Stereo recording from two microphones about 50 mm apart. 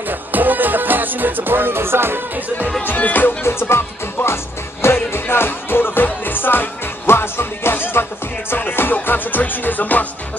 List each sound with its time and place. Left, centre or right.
0.0 s music: right
2.8 s music: left
3.4 s speech: left
4.8 s music: left